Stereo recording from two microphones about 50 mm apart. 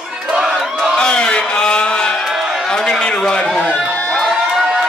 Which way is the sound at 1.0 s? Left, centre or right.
Centre.